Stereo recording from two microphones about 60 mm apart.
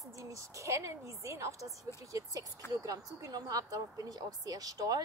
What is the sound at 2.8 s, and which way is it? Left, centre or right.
Speech, right.